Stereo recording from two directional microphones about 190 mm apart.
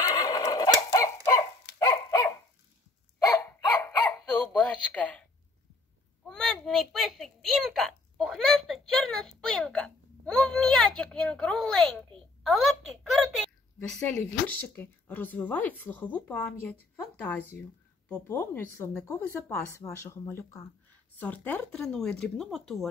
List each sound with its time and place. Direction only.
0.0 s neigh: 20° left (ahead or behind)
0.9 s dog: 20° left (ahead or behind)
3.4 s dog: 10° left (ahead or behind)
6.2 s a child's voice: 5° left (ahead or behind)